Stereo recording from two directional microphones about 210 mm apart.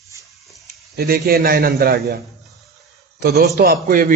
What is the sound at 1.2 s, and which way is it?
Speech, 45° right (ahead or behind).